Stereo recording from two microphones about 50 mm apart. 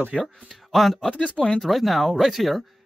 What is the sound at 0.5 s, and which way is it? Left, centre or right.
Speech, centre.